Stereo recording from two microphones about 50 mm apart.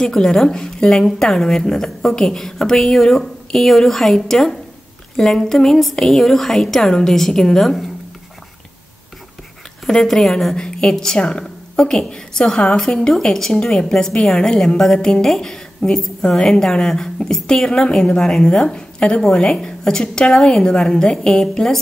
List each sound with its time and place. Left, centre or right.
0.1 s a woman's voice: centre
9.8 s a woman's voice: centre